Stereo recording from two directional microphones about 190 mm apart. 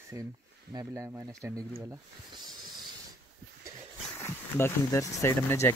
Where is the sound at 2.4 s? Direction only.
20° right (ahead or behind).